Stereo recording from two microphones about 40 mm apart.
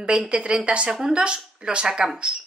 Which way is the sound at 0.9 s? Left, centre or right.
Centre.